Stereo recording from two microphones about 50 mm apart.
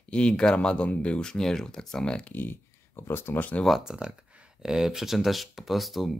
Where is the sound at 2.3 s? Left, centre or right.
Left.